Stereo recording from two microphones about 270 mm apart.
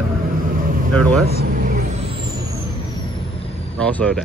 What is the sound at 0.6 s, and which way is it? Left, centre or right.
Vehicle, right.